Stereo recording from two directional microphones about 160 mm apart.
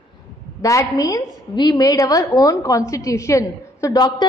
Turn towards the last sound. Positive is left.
turn(degrees=25)  # may be behind; listen again after turning